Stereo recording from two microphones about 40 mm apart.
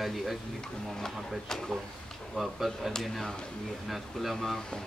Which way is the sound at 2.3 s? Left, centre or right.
Centre.